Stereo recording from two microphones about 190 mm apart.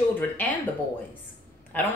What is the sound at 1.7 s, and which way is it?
Speech, 10° left (ahead or behind).